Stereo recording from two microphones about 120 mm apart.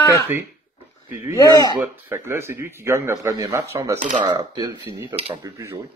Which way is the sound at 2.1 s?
20° right (ahead or behind).